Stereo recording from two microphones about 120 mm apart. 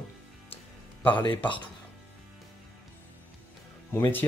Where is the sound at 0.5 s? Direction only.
15° left (ahead or behind).